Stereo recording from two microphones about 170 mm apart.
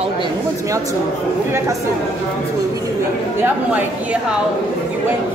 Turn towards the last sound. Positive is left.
turn(degrees=-10)  # may be behind; listen again after turning